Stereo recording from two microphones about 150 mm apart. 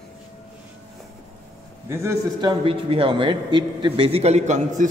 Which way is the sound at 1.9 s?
15° right (ahead or behind).